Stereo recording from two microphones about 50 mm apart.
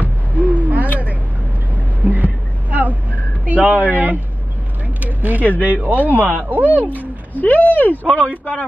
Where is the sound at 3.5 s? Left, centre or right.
Right.